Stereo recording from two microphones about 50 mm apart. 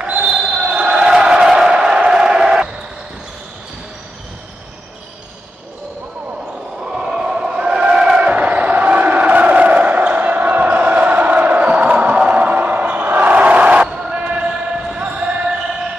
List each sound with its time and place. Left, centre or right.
0.2 s basketball bounce: centre
6.8 s a sound: centre
13.8 s music: centre
14.2 s basketball bounce: right